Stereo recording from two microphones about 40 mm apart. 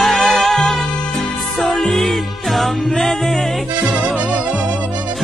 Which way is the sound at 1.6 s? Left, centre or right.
Centre.